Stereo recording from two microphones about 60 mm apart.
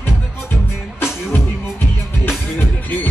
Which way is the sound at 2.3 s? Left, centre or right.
Left.